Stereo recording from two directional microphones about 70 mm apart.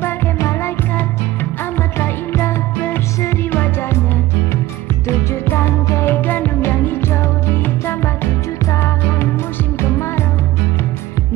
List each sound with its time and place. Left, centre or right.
2.0 s music: left
5.0 s music: left
9.8 s music: left